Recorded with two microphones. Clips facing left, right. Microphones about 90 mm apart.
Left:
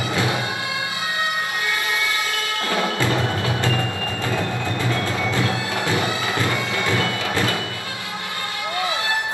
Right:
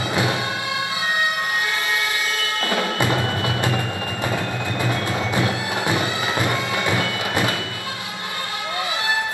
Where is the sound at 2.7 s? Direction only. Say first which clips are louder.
Even; 20° right (ahead or behind).